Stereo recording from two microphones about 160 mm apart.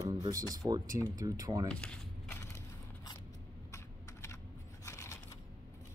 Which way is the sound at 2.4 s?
15° left (ahead or behind).